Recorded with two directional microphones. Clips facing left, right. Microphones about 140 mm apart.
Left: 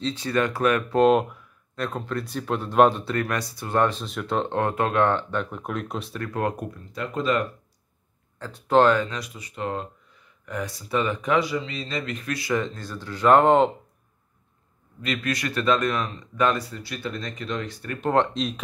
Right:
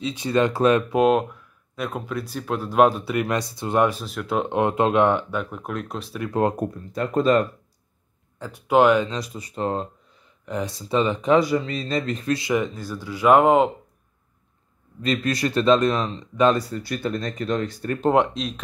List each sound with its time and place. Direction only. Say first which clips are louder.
0.0 s speech: right 3 dB; 15° right (ahead or behind)
0.8 s speech: even; 5° right (ahead or behind)
3.3 s speech: right 4 dB; 20° right (ahead or behind); by 6.2 s centre (ahead or behind)
6.2 s speech: right 6 dB; 25° right (ahead or behind)
6.9 s speech: right 6 dB; 45° right (ahead or behind)
8.4 s speech: right 1 dB; 10° right (ahead or behind)
9.1 s speech: right 5 dB; 35° right (ahead or behind)
11.3 s speech: right 6 dB; 45° right (ahead or behind)
12.4 s speech: right 3 dB; 15° right (ahead or behind)
15.0 s speech: right 4 dB; 35° right (ahead or behind)
16.5 s speech: right 6 dB; 40° right (ahead or behind)
18.3 s speech: left 2 dB; centre (ahead or behind)